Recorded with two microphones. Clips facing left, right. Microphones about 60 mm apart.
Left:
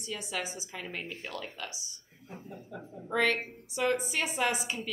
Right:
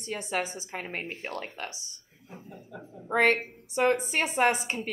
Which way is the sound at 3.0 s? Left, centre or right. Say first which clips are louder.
Right 5 dB; right.